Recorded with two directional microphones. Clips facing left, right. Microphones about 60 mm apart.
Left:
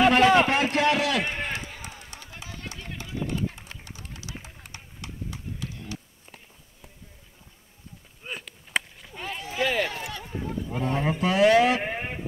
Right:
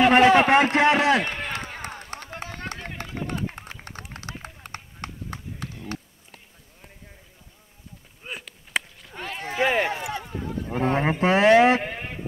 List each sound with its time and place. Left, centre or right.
0.1 s a man's voice: right
1.2 s a man's voice: centre
1.5 s run: right
4.6 s clip-clop: right
8.2 s chop: centre
9.6 s a sound: right
10.7 s speech: right
11.8 s a sound: centre